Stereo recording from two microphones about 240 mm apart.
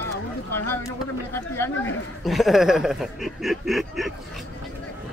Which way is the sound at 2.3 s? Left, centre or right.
Centre.